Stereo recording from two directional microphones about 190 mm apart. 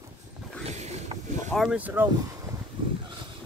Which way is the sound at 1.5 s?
Centre (ahead or behind).